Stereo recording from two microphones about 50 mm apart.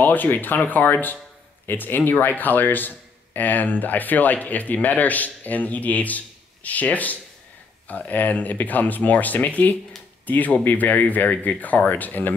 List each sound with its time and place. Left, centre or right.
0.0 s speech: left